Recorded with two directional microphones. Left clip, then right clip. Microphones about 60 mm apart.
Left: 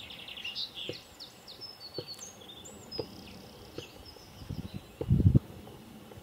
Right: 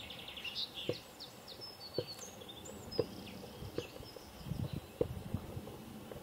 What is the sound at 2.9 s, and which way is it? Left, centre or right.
Insect, centre.